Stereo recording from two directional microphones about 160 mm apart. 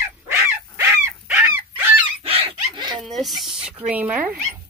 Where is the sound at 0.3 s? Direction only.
15° right (ahead or behind).